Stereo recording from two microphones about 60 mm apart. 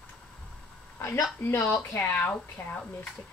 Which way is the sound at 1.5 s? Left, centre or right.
Left.